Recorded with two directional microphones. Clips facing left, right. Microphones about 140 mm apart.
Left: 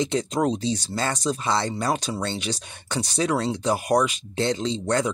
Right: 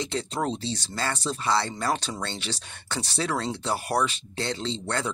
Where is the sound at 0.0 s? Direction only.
15° left (ahead or behind).